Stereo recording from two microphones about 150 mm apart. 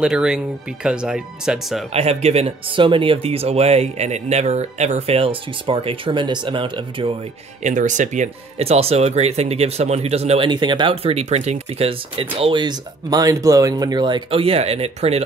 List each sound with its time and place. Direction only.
0.0 s speech: 5° right (ahead or behind)
2.0 s speech: 45° right (ahead or behind)
7.6 s speech: 55° right (ahead or behind)